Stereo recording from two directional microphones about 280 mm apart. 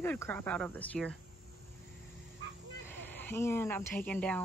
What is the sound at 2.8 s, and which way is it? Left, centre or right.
Speech, centre.